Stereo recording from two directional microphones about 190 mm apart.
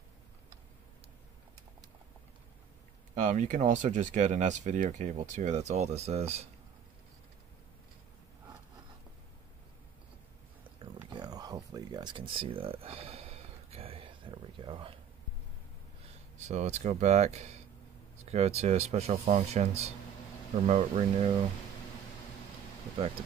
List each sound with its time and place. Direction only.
3.2 s speech: 40° right (ahead or behind)
11.1 s a sound: 20° right (ahead or behind)
16.3 s speech: 35° right (ahead or behind)